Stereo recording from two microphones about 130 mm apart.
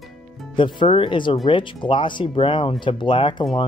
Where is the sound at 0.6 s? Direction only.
40° left (ahead or behind).